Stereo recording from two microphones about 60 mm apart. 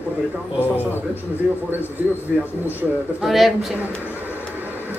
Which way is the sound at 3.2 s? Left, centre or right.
Centre.